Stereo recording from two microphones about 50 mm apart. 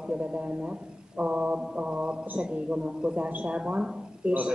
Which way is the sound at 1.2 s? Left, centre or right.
Right.